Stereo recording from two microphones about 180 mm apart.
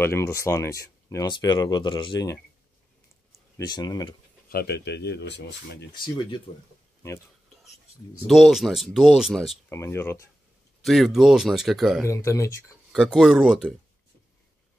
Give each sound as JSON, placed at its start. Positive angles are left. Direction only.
{"t": 0.0, "sound": "speech", "side_deg": 15}
{"t": 3.5, "sound": "speech", "side_deg": 25}
{"t": 4.5, "sound": "speech", "side_deg": 60}
{"t": 6.0, "sound": "speech", "side_deg": 25}
{"t": 8.3, "sound": "speech", "side_deg": 0}
{"t": 9.7, "sound": "speech", "side_deg": 15}
{"t": 10.8, "sound": "speech", "side_deg": 0}
{"t": 12.1, "sound": "speech", "side_deg": 15}
{"t": 12.9, "sound": "speech", "side_deg": 0}